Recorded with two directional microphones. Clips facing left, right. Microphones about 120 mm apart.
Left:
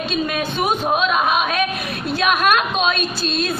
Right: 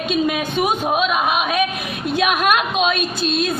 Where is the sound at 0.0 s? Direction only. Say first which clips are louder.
Right 2 dB; 15° right (ahead or behind).